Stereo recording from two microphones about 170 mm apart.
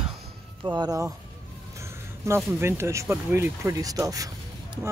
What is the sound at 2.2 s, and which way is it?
Speech, 15° right (ahead or behind).